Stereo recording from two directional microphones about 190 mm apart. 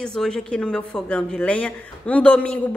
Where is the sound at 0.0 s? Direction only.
5° left (ahead or behind).